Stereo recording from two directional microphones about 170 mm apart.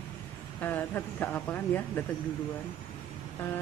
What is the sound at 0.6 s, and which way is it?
Speech, 10° left (ahead or behind).